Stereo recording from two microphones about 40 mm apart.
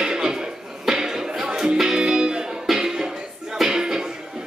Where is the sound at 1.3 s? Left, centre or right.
Centre.